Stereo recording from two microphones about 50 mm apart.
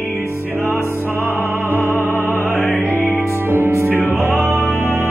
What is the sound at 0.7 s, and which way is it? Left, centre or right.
Music, right.